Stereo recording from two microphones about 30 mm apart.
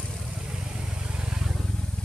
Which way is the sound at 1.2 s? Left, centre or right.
Right.